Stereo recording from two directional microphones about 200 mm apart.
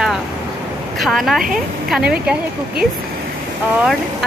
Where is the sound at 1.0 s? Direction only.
Centre (ahead or behind).